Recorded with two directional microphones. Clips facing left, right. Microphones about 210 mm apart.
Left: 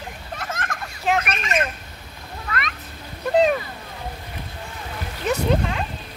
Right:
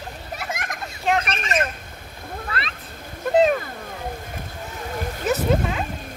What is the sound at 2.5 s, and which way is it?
Cat, 30° right (ahead or behind).